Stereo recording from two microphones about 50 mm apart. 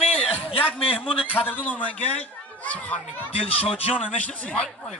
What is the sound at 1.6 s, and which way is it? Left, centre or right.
A man's voice, left.